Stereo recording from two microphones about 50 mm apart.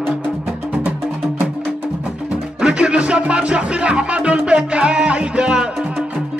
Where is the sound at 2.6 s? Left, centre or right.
Right.